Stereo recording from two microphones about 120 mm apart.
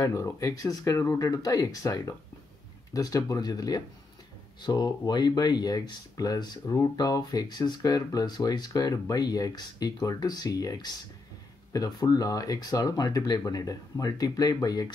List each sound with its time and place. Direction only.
0.0 s speech: 25° left (ahead or behind)